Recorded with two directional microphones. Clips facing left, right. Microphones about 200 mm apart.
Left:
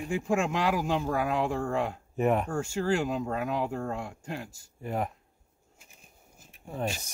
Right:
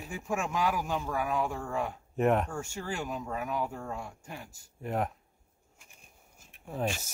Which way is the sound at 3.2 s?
80° left.